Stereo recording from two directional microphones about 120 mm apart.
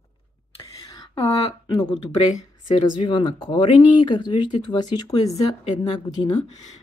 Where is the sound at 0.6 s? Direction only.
30° left (ahead or behind).